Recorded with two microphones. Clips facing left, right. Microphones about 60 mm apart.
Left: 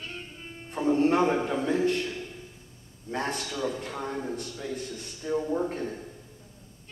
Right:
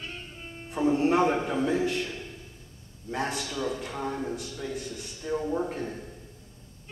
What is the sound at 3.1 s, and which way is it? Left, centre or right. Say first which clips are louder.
A man's voice: even; centre.